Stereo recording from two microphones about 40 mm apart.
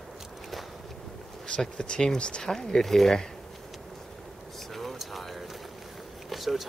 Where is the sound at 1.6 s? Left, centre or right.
Centre.